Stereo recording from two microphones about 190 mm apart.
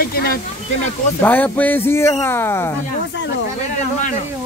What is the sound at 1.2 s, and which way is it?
Speech, 10° left (ahead or behind).